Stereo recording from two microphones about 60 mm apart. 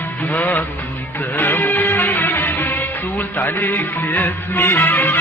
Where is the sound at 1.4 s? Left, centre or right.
Left.